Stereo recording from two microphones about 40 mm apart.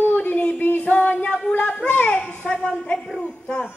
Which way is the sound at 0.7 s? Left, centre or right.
Left.